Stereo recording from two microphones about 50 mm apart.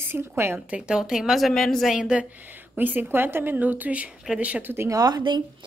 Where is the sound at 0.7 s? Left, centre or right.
Centre.